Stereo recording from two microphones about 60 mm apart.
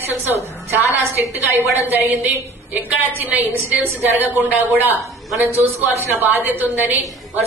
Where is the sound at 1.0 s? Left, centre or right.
Right.